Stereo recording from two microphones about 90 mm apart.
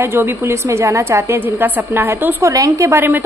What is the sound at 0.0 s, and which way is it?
A woman's voice, 30° right (ahead or behind).